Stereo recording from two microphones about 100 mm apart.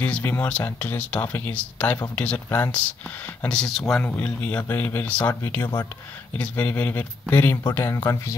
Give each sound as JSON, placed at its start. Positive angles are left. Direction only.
{"t": 0.0, "sound": "speech", "side_deg": 15}
{"t": 6.3, "sound": "speech", "side_deg": 15}